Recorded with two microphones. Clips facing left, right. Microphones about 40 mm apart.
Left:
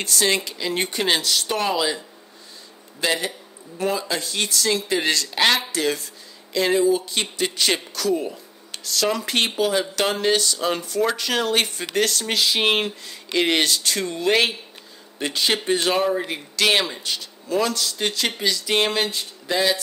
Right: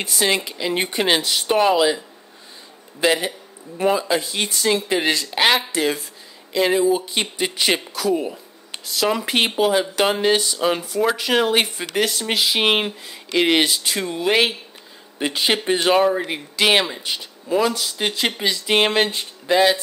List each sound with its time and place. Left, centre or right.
0.0 s speech: centre
3.0 s a man's voice: centre